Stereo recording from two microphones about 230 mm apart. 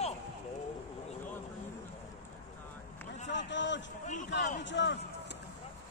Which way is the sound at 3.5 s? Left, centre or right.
Left.